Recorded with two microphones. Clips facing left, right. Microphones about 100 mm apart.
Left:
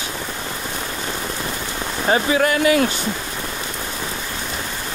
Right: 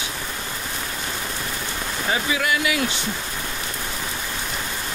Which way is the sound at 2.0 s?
40° left (ahead or behind).